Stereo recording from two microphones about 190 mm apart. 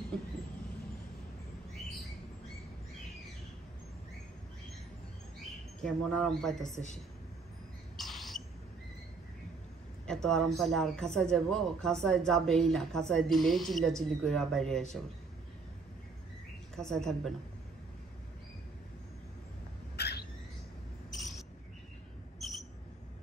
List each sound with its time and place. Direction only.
5.8 s a woman's voice: 5° left (ahead or behind)
8.0 s rodents: centre (ahead or behind)
10.0 s a woman's voice: 5° left (ahead or behind)
16.7 s a woman's voice: 5° left (ahead or behind)
20.0 s cat: 60° left (ahead or behind)
21.1 s cricket: centre (ahead or behind)